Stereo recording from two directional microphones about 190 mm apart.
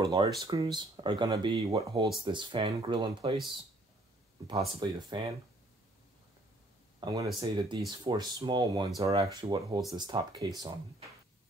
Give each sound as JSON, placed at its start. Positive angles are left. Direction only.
{"t": 0.0, "sound": "speech", "side_deg": -20}
{"t": 4.5, "sound": "speech", "side_deg": -25}
{"t": 7.0, "sound": "speech", "side_deg": -20}